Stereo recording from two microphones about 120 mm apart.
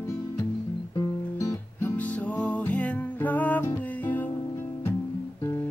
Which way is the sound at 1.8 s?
15° left (ahead or behind).